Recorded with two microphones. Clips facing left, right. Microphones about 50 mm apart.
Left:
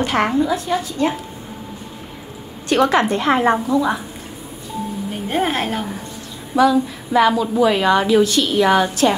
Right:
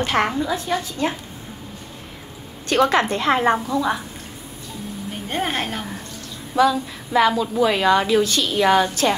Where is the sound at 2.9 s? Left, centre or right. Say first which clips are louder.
Left 2 dB; left.